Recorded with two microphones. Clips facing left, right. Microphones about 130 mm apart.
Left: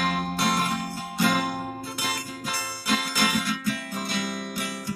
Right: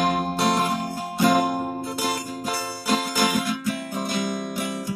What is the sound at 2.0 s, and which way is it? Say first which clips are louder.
Music: right 5 dB; 35° right (ahead or behind).